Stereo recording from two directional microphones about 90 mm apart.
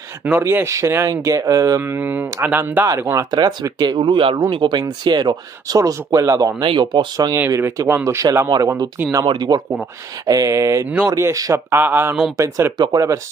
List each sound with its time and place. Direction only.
0.4 s speech: 30° right (ahead or behind)
1.8 s speech: 25° right (ahead or behind)
3.3 s speech: 50° right (ahead or behind); by 4.4 s 80° right
4.4 s speech: 65° right (ahead or behind); by 6.5 s 35° right (ahead or behind)
6.8 s speech: 60° right (ahead or behind)
7.3 s speech: 25° right (ahead or behind)
9.2 s speech: 60° right (ahead or behind)
10.2 s speech: 40° right (ahead or behind)
11.7 s speech: 25° right (ahead or behind)
12.4 s speech: 35° right (ahead or behind)